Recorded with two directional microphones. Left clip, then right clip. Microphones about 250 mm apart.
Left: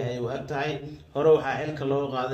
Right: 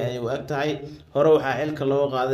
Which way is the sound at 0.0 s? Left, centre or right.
Right.